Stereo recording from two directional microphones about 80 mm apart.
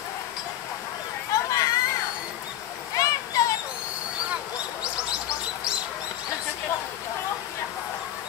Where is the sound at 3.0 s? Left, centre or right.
Left.